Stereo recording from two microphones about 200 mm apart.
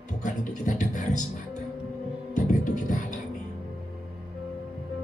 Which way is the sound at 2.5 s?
40° left (ahead or behind).